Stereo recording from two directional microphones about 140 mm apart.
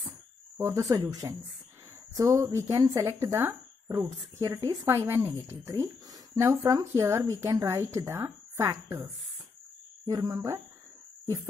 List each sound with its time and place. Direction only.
0.6 s speech: 20° right (ahead or behind)
10.0 s speech: 25° right (ahead or behind)